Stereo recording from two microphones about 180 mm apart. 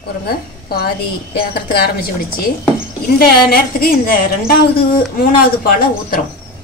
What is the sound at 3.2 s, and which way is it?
A woman's voice, 55° left (ahead or behind).